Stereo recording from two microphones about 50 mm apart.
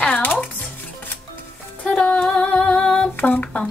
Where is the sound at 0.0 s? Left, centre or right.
Left.